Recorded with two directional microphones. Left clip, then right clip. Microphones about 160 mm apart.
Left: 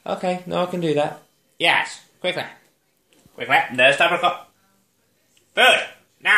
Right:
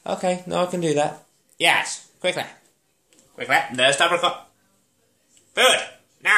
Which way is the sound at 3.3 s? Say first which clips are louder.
Left 3 dB; 10° left (ahead or behind).